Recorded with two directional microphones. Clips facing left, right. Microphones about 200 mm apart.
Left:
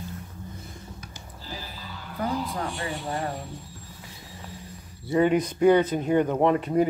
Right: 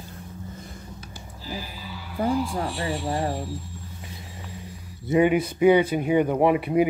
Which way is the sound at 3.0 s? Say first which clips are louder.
Right 4 dB; 30° right (ahead or behind).